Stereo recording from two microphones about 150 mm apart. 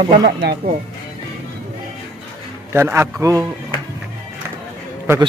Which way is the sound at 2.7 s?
15° right (ahead or behind).